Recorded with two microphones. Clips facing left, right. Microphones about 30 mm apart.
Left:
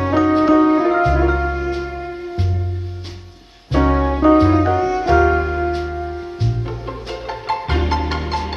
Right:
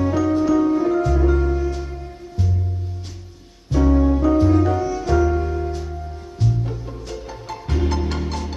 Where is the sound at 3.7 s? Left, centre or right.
Left.